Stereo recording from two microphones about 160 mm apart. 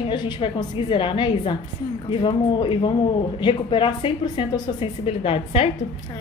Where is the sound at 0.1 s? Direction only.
30° left (ahead or behind).